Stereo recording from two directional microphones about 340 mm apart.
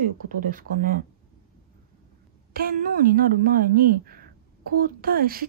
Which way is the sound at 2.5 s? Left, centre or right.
Right.